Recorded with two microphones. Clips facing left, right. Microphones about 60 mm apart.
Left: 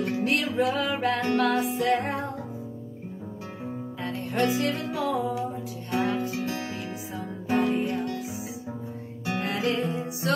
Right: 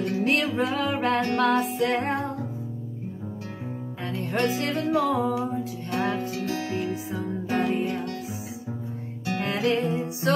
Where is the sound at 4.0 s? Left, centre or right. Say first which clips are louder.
Even; right.